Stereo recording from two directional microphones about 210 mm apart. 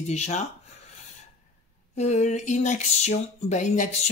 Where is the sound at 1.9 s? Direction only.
35° left (ahead or behind).